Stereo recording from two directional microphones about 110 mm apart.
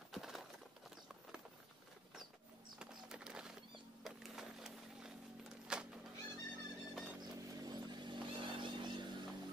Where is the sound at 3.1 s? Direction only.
5° right (ahead or behind).